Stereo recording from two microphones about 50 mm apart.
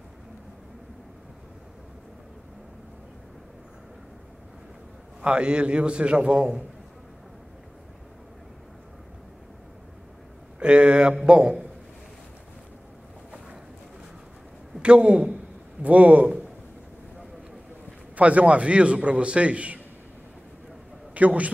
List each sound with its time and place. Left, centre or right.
5.2 s a man's voice: centre
10.6 s a man's voice: right
14.8 s a man's voice: right
18.1 s a man's voice: right
21.1 s a man's voice: right